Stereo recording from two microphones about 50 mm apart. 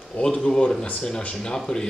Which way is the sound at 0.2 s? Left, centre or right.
Centre.